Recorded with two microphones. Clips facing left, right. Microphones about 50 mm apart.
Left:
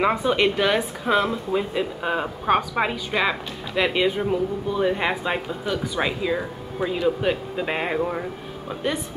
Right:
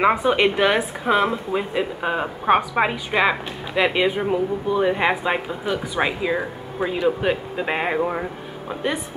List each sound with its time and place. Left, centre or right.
0.2 s a woman's voice: right